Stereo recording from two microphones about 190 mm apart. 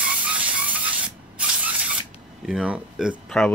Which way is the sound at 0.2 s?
5° right (ahead or behind).